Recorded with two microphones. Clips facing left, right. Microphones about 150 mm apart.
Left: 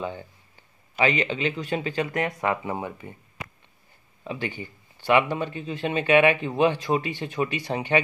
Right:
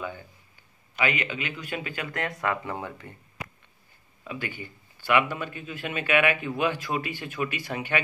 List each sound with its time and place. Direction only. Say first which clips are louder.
0.9 s a man's voice: left 5 dB; 30° left (ahead or behind)
1.9 s speech: left 6 dB; 20° left (ahead or behind)
4.2 s speech: left 4 dB; 25° left (ahead or behind)